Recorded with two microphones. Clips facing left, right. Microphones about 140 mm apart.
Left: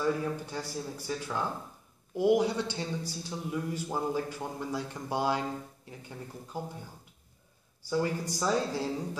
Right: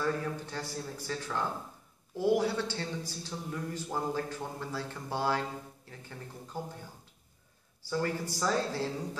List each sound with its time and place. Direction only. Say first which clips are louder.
0.0 s a man's voice: left 3 dB; 10° left (ahead or behind)
7.9 s a man's voice: left 2 dB; 15° left (ahead or behind)